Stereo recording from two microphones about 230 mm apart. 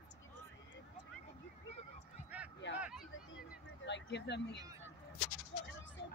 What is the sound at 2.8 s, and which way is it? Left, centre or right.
Speech, centre.